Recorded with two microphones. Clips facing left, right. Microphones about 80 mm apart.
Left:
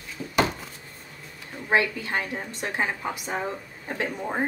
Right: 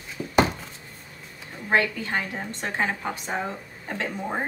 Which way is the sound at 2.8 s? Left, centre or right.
Centre.